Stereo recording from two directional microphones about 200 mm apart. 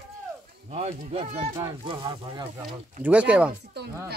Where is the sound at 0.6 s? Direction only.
35° right (ahead or behind).